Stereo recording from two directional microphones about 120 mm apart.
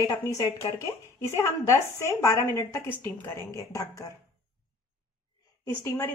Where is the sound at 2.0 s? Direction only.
20° left (ahead or behind).